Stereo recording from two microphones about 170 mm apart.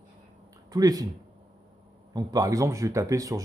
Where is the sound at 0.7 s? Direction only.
20° right (ahead or behind).